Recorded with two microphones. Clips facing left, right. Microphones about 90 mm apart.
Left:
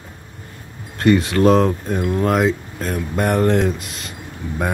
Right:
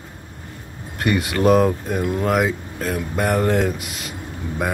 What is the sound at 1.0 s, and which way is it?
Speech, 10° right (ahead or behind).